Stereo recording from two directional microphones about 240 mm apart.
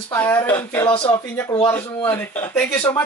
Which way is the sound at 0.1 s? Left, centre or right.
Centre.